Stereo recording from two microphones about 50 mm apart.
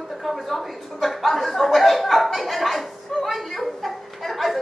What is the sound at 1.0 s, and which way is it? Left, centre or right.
Speech, centre.